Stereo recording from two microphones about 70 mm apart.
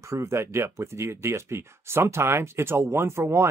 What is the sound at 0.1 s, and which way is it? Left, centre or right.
Speech, right.